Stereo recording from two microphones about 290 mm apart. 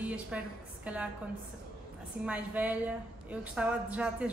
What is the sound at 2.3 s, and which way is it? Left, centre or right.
A man's voice, centre.